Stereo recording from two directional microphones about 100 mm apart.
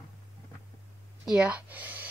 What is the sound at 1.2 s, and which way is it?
Speech, 10° right (ahead or behind).